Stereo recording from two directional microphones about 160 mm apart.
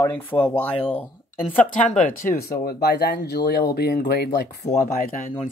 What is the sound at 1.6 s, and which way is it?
Speech, 55° left (ahead or behind).